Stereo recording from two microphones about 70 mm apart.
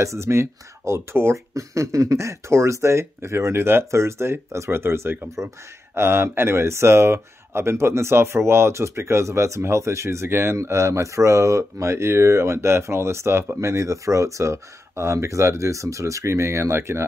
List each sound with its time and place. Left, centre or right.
0.0 s speech: right
1.5 s speech: right